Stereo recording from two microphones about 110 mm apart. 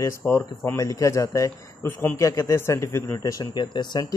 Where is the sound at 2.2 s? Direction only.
30° left (ahead or behind).